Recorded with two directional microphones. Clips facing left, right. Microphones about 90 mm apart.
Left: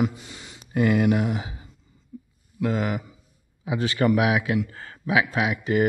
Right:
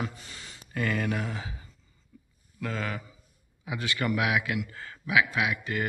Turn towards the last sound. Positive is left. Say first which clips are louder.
# left 7 dB
turn(degrees=20)  # may be behind; listen again after turning